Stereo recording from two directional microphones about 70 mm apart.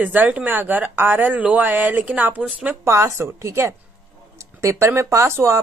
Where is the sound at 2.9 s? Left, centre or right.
Right.